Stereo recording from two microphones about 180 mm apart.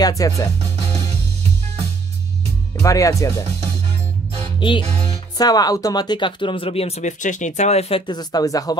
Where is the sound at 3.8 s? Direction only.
30° right (ahead or behind).